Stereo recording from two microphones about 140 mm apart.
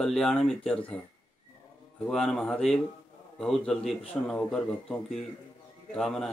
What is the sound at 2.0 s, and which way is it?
A man's voice, 5° left (ahead or behind).